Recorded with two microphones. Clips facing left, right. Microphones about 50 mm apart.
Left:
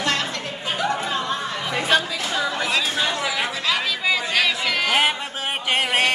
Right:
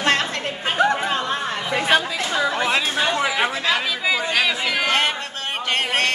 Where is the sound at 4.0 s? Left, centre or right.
Centre.